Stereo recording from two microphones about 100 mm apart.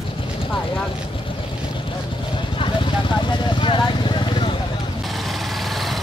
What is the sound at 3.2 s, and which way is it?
Vehicle, 55° left (ahead or behind).